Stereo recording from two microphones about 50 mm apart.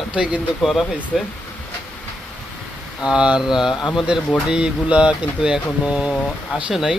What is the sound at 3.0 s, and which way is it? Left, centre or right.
Speech, centre.